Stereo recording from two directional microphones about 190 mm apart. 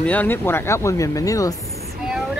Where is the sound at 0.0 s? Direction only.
10° left (ahead or behind).